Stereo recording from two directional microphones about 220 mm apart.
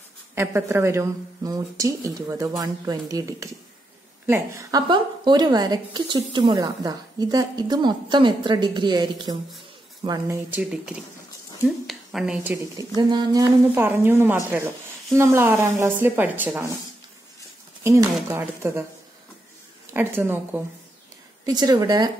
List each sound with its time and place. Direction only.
0.3 s a woman's voice: 10° right (ahead or behind)
12.7 s a woman's voice: 20° right (ahead or behind)
17.8 s speech: 10° right (ahead or behind)
19.9 s speech: 10° right (ahead or behind)